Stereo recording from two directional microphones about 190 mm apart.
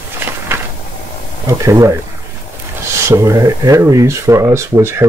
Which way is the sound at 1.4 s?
15° right (ahead or behind).